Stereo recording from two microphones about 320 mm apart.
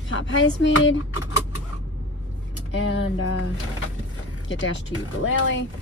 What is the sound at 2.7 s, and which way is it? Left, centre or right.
Speech, left.